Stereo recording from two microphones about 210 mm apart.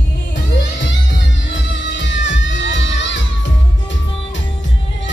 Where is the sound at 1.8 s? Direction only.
60° left (ahead or behind).